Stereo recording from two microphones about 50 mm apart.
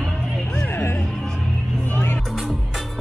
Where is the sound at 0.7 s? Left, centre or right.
Left.